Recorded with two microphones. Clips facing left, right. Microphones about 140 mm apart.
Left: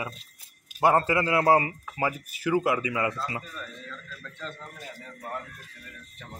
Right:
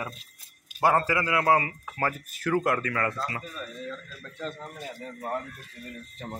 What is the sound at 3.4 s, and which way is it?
Speech, 15° right (ahead or behind).